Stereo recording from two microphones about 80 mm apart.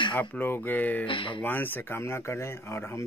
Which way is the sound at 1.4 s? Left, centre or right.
Left.